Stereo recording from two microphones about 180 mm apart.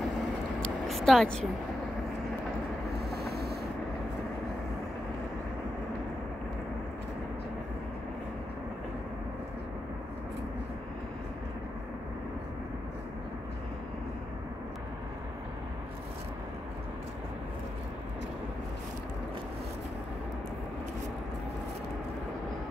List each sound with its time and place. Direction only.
0.8 s speech: centre (ahead or behind)
3.1 s rub: 60° right (ahead or behind)